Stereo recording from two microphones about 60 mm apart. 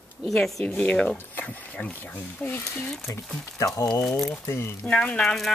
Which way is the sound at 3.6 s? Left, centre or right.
Left.